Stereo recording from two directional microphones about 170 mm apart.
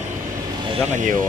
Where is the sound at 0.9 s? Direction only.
50° right (ahead or behind).